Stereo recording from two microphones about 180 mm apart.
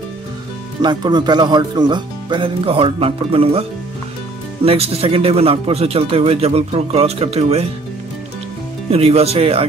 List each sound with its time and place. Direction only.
0.8 s speech: 25° right (ahead or behind)
4.6 s a man's voice: 35° right (ahead or behind)
8.9 s a man's voice: 35° right (ahead or behind)